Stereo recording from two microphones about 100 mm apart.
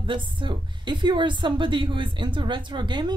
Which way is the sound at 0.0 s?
55° right (ahead or behind).